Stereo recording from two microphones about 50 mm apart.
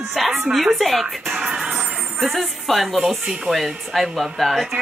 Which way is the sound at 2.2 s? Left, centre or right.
Centre.